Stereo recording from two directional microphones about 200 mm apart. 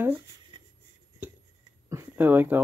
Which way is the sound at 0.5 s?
25° right (ahead or behind).